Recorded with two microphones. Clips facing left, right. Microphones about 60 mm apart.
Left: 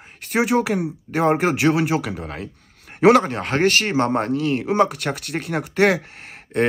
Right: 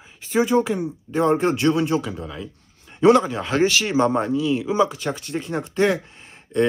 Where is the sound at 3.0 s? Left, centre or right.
Left.